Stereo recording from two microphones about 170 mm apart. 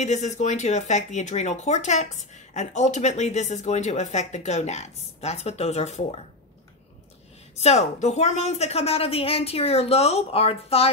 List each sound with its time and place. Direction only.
0.0 s speech: 45° left (ahead or behind)
7.5 s a woman's voice: 40° left (ahead or behind)